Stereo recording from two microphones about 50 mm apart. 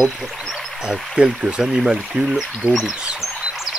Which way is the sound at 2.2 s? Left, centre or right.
Centre.